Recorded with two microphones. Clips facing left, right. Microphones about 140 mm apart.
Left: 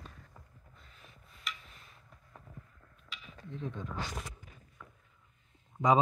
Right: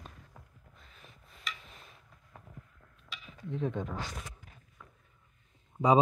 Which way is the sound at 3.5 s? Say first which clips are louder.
Right 7 dB; 60° right (ahead or behind).